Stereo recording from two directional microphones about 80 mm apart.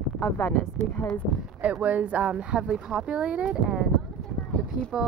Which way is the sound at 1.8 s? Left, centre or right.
Centre.